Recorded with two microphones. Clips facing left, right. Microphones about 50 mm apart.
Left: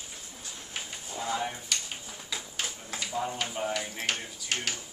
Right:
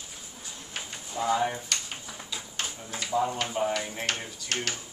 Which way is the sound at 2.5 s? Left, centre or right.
Centre.